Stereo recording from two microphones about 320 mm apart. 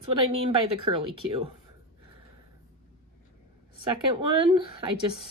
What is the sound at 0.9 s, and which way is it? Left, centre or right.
Speech, centre.